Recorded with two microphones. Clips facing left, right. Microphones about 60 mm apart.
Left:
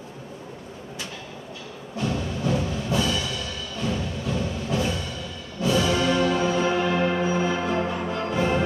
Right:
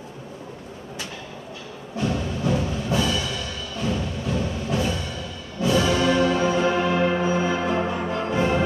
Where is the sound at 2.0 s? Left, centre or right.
Centre.